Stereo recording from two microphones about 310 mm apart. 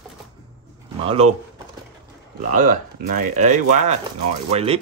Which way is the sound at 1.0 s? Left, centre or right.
Centre.